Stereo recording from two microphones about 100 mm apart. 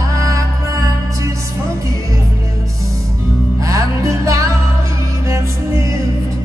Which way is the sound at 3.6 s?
30° right (ahead or behind).